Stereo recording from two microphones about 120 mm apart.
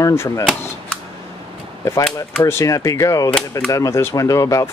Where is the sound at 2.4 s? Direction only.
20° left (ahead or behind).